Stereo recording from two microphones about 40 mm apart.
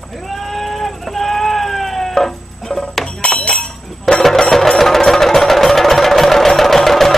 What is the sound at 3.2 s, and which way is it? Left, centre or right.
Chink, left.